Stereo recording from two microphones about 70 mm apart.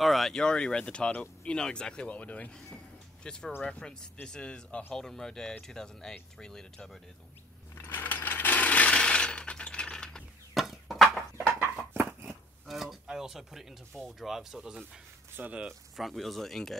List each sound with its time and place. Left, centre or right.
0.0 s speech: centre
7.8 s coin: left; by 10.2 s centre
10.5 s chicken: centre
11.3 s a sound: right
11.9 s dog: right
12.6 s a sound: centre
13.0 s speech: centre
15.3 s speech: right
16.0 s speech: centre